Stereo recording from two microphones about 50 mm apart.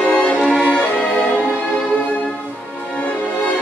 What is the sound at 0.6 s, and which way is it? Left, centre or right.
Music, centre.